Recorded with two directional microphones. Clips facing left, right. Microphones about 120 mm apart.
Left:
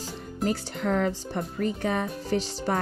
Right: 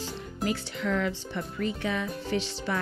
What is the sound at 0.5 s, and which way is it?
Speech, 40° left (ahead or behind).